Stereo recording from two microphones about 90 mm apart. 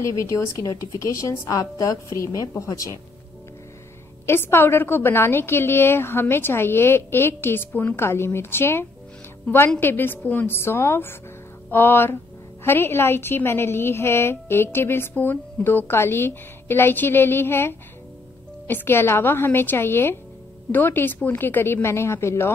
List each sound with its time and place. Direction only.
0.0 s a woman's voice: 35° left (ahead or behind)
4.3 s a woman's voice: 25° left (ahead or behind)